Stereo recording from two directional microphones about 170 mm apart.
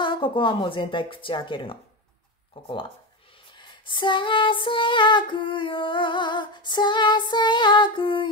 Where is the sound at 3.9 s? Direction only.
30° left (ahead or behind).